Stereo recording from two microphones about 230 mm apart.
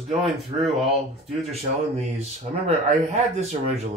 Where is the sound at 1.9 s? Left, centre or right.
Right.